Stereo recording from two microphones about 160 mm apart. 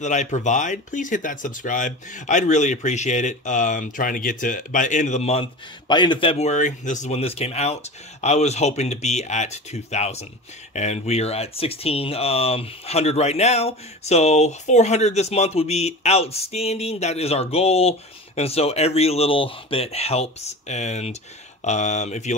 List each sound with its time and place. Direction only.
0.0 s speech: 50° left (ahead or behind); by 6.5 s 35° left (ahead or behind)
6.5 s speech: 50° left (ahead or behind)